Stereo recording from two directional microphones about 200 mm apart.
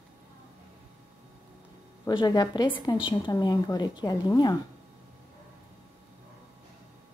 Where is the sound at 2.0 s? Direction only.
20° left (ahead or behind).